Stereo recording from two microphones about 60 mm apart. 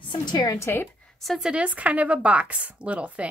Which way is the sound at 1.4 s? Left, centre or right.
Centre.